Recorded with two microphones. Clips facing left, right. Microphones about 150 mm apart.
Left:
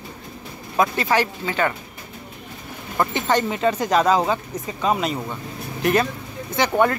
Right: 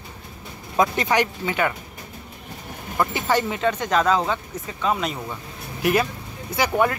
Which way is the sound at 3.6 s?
5° left (ahead or behind).